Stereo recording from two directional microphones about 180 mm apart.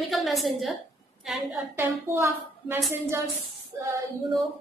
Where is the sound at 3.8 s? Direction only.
15° right (ahead or behind).